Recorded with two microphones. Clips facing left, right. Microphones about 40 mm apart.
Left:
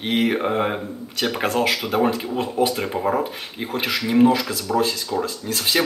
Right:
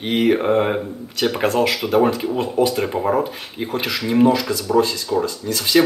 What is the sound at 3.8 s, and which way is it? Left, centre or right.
Speech, centre.